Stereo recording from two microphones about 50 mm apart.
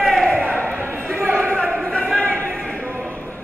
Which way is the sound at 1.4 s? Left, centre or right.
Left.